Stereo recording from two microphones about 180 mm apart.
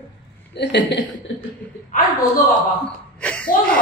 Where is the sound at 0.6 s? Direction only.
75° left (ahead or behind).